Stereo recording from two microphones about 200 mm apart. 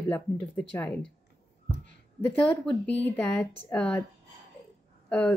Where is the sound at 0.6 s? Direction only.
10° left (ahead or behind).